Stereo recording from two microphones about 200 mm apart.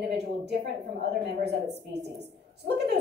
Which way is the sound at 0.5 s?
60° right (ahead or behind).